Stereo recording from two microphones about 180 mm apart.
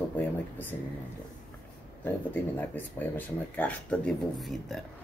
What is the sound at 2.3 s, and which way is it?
Speech, 10° left (ahead or behind).